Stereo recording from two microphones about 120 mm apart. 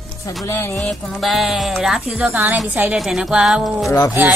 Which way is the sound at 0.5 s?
20° left (ahead or behind).